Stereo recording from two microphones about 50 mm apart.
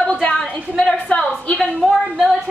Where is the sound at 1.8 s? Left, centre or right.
Centre.